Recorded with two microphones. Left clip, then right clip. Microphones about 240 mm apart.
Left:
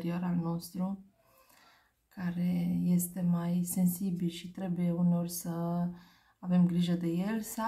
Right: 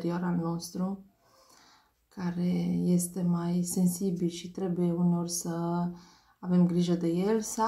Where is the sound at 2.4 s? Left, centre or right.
Left.